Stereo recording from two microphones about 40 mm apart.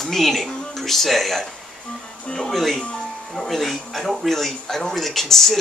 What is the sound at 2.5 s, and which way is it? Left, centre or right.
Speech, centre.